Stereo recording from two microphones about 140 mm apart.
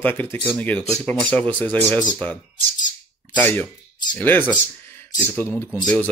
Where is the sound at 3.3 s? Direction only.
15° left (ahead or behind).